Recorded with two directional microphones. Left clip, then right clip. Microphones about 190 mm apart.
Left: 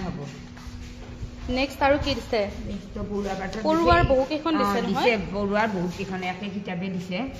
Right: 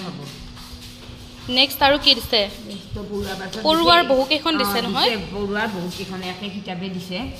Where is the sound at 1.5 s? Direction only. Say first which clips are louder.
Right 6 dB; 5° left (ahead or behind).